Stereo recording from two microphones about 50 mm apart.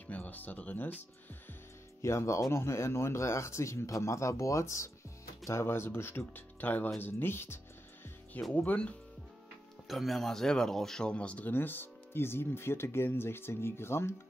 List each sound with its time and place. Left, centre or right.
0.1 s speech: left
2.0 s speech: left
2.5 s speech: left
5.5 s speech: left
8.3 s speech: left
9.8 s speech: centre
11.1 s speech: left
11.5 s speech: left